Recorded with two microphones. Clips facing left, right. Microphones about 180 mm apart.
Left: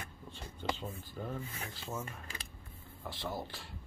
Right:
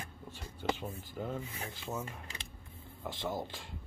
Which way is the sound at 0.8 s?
15° right (ahead or behind).